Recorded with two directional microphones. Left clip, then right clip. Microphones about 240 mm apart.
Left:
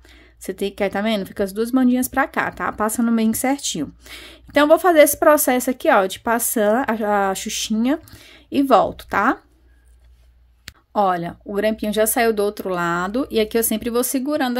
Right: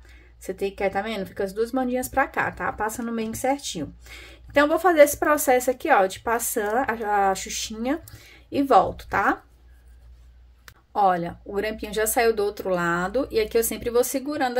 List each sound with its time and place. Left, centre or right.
0.4 s speech: left
10.9 s speech: left